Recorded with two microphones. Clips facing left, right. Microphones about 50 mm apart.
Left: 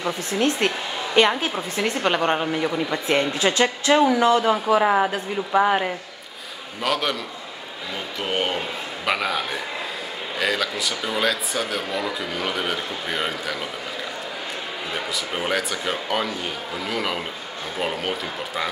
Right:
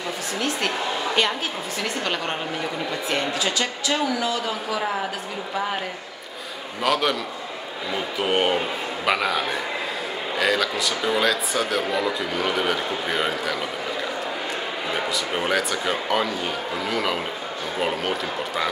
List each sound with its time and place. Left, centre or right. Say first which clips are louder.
0.0 s speech: left 4 dB; left
6.8 s speech: right 2 dB; centre
8.2 s speech: right 3 dB; centre
15.1 s speech: even; centre